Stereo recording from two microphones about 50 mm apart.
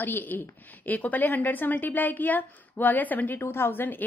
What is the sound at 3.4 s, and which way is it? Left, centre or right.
Speech, left.